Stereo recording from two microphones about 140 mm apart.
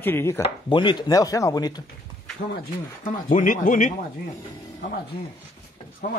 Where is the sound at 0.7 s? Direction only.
35° left (ahead or behind).